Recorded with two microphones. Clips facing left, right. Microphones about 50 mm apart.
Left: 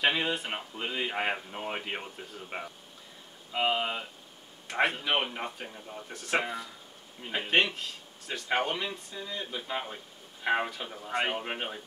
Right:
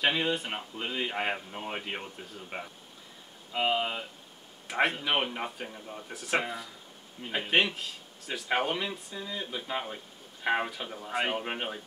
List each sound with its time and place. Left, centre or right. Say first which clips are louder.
0.0 s speech: even; centre